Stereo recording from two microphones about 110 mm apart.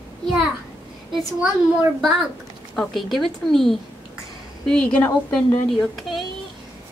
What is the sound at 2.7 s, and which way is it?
Speech, centre (ahead or behind).